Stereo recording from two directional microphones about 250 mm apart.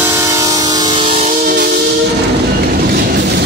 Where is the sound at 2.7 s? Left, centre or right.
Right.